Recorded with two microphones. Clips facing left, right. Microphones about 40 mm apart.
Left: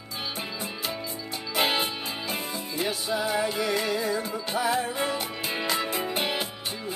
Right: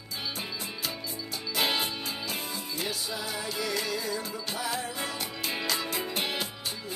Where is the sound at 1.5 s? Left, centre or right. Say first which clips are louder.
Left 3 dB; centre.